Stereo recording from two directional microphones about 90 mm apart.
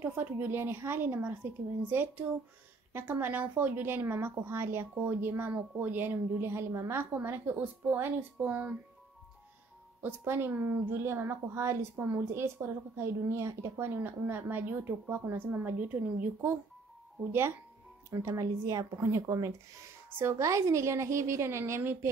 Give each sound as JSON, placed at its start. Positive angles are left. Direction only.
{"t": 0.0, "sound": "speech", "side_deg": -20}
{"t": 10.0, "sound": "speech", "side_deg": -25}
{"t": 17.3, "sound": "a woman's voice", "side_deg": -30}